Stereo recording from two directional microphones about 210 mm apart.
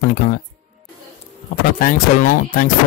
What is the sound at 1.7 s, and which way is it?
Speech, 40° left (ahead or behind).